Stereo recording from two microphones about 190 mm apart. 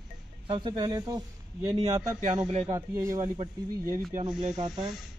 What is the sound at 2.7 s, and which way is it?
Speech, 15° right (ahead or behind).